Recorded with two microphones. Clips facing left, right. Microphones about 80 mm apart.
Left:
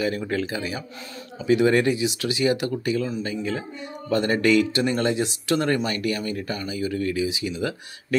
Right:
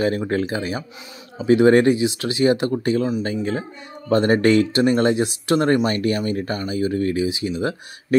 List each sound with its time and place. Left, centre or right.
0.0 s speech: right